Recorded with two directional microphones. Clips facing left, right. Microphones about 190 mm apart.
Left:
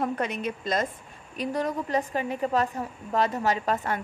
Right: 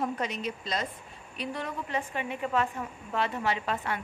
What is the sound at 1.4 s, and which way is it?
A woman's voice, 40° left (ahead or behind).